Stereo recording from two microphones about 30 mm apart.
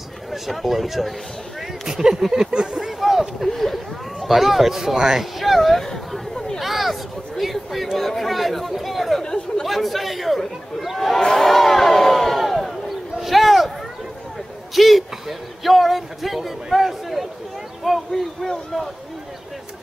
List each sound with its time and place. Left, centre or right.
0.3 s speech: centre
2.5 s speech: right
3.0 s a sound: centre
3.4 s speech: centre
5.4 s speech: centre
5.9 s chatter: centre
6.6 s a sound: centre
7.5 s speech: centre
11.3 s crowd: centre
13.2 s a sound: centre
14.8 s speech: centre
17.8 s speech: centre